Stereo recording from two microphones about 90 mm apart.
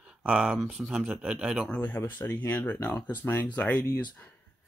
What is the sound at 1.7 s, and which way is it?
Speech, 15° left (ahead or behind).